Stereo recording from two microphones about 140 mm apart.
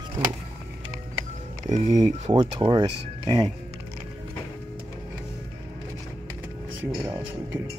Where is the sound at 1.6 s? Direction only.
60° right (ahead or behind).